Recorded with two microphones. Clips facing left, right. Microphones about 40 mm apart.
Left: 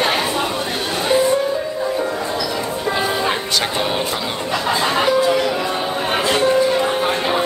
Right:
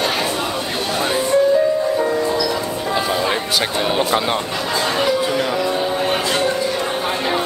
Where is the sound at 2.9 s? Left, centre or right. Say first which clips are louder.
Right 1 dB; centre.